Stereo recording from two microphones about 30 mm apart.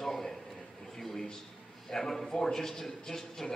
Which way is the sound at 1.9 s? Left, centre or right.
Centre.